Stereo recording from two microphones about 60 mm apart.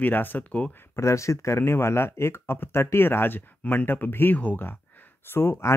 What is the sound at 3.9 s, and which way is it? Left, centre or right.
Speech, left.